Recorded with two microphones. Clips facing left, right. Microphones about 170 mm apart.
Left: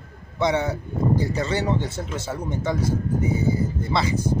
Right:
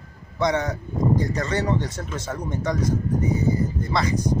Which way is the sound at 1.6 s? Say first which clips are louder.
Even; 25° left (ahead or behind).